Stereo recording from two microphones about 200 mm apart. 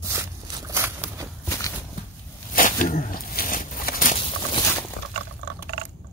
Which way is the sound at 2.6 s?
40° left (ahead or behind).